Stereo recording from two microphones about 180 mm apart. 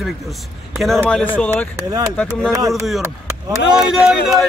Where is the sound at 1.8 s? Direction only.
20° right (ahead or behind).